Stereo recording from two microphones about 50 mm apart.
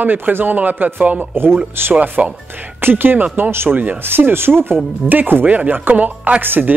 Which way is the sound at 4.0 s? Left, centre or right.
Right.